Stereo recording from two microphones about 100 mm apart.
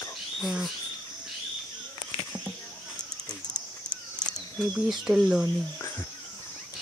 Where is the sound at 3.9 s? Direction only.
10° left (ahead or behind).